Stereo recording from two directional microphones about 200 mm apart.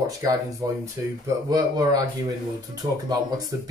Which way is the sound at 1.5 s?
20° right (ahead or behind).